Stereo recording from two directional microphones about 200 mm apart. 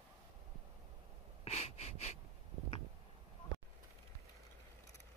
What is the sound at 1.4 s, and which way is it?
Wheeze, 30° left (ahead or behind).